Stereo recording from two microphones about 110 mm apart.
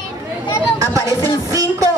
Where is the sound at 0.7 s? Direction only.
30° right (ahead or behind).